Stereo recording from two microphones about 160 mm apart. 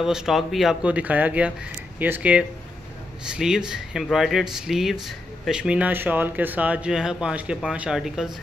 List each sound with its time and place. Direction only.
0.0 s speech: 5° right (ahead or behind)